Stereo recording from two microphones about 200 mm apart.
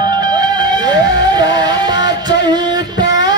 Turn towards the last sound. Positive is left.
turn(degrees=-20)  # may be behind; listen again after turning